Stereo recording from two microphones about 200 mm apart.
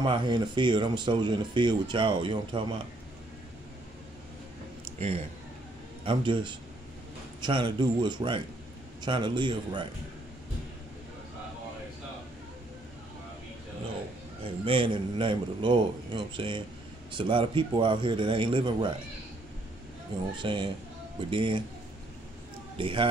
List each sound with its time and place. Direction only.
0.0 s speech: 20° right (ahead or behind)
6.0 s speech: 25° right (ahead or behind)
14.4 s speech: 25° right (ahead or behind)
20.3 s speech: 25° right (ahead or behind)
22.8 s speech: 25° right (ahead or behind)